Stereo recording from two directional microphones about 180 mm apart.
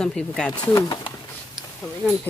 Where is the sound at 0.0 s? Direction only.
5° left (ahead or behind).